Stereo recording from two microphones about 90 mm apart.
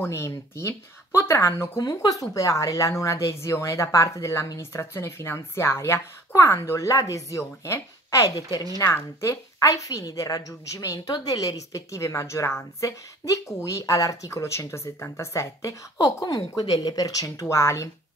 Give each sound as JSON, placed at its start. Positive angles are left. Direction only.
{"t": 0.0, "sound": "a woman's voice", "side_deg": 30}
{"t": 8.8, "sound": "a woman's voice", "side_deg": 30}